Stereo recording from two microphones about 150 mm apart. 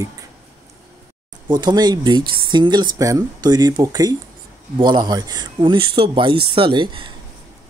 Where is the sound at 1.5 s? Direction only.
30° right (ahead or behind).